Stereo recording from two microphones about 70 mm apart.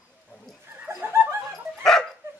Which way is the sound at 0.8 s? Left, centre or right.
Right.